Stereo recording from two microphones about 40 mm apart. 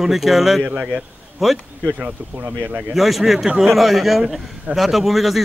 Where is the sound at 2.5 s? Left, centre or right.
Right.